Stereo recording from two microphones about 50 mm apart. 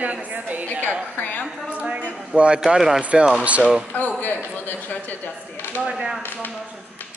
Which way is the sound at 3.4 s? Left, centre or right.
Right.